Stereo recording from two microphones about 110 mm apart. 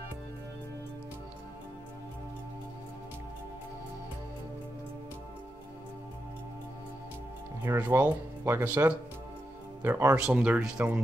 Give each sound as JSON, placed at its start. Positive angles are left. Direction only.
{"t": 7.6, "sound": "speech", "side_deg": -25}
{"t": 10.1, "sound": "speech", "side_deg": -10}